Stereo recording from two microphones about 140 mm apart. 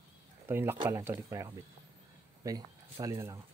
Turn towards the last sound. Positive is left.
turn(degrees=-20)  # may be behind; listen again after turning